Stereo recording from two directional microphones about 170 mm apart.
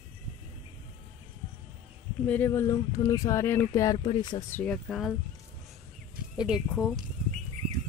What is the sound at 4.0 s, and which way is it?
Speech, 30° left (ahead or behind).